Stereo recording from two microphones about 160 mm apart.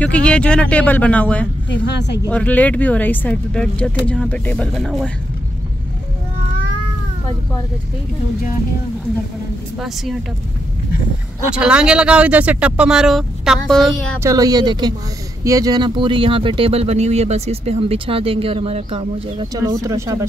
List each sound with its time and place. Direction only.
0.0 s speech: 5° left (ahead or behind)
1.7 s speech: 90° left
2.2 s speech: 10° left (ahead or behind)
11.5 s speech: 5° right (ahead or behind)
14.2 s speech: 20° right (ahead or behind)
19.5 s speech: 20° right (ahead or behind)